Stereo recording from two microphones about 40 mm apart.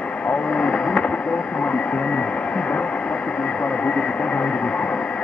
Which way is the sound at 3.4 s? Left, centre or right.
Left.